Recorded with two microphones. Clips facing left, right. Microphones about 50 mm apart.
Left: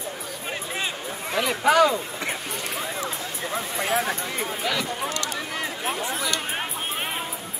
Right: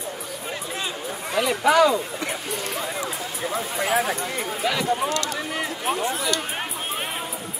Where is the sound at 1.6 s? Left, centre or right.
Centre.